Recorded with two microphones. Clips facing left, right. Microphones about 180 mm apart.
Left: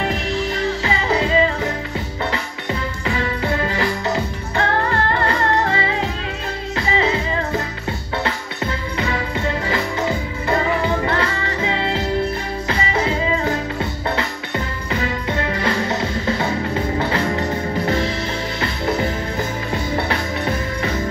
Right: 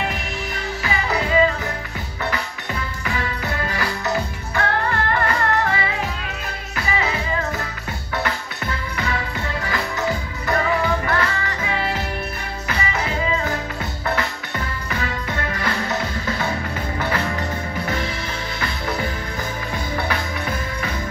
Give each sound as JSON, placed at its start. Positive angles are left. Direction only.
{"t": 0.8, "sound": "music", "side_deg": 25}
{"t": 14.9, "sound": "music", "side_deg": 25}